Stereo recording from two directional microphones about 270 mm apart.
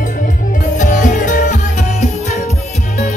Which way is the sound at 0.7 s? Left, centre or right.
Left.